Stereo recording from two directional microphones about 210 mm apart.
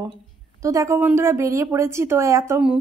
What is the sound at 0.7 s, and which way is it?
A woman's voice, 15° right (ahead or behind).